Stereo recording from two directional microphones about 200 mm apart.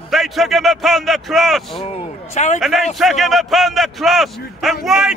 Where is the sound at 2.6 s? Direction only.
Centre (ahead or behind).